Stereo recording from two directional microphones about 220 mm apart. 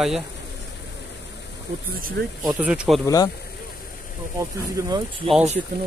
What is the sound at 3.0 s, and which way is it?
Speech, 15° left (ahead or behind).